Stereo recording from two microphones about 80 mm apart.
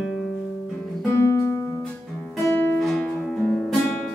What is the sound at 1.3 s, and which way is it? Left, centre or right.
Music, left.